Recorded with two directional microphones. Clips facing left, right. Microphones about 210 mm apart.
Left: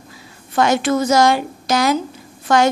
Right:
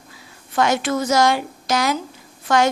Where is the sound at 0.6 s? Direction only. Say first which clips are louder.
Left 3 dB; 35° left (ahead or behind).